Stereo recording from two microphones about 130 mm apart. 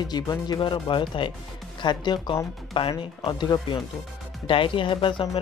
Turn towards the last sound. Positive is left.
turn(degrees=40)  # may be behind; listen again after turning